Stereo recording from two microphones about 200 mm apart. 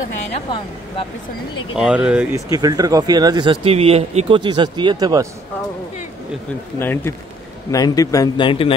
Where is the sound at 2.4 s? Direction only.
20° right (ahead or behind).